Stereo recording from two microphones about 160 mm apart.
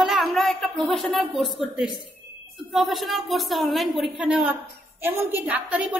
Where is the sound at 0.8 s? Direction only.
Centre (ahead or behind).